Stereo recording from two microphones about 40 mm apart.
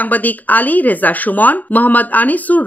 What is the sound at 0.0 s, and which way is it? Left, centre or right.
Speech, left.